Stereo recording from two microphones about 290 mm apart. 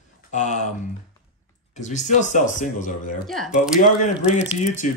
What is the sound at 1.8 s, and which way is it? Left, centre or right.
A man's voice, left.